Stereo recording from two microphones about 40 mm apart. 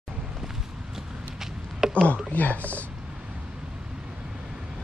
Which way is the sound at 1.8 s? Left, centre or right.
Centre.